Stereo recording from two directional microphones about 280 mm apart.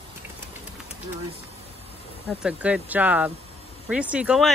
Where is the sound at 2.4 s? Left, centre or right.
Centre.